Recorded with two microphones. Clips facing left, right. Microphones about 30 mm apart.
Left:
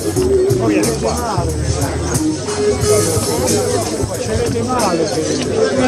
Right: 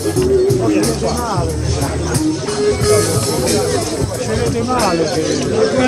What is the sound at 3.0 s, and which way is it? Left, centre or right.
Music, right.